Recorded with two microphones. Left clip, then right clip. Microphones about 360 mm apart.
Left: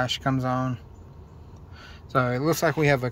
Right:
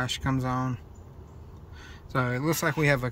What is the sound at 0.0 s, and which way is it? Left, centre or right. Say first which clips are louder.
Speech: left 4 dB; centre.